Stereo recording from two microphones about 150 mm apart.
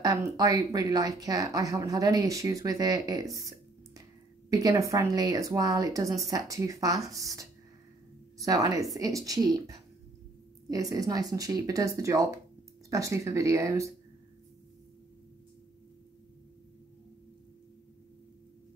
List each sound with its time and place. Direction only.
0.0 s a woman's voice: 25° right (ahead or behind)
3.3 s a sound: 20° right (ahead or behind)
4.5 s a woman's voice: 20° right (ahead or behind)